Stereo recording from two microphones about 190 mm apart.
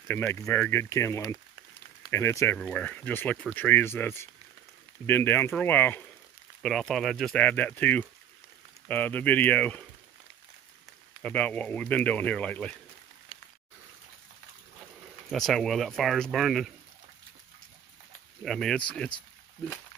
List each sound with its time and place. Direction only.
0.1 s speech: 15° left (ahead or behind)
11.2 s speech: 10° left (ahead or behind)
13.3 s a sound: 30° left (ahead or behind)
15.3 s speech: centre (ahead or behind)
18.4 s speech: centre (ahead or behind)